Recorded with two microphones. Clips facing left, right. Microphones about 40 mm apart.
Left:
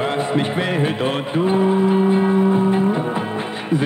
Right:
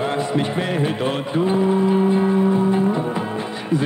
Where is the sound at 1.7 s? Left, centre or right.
Left.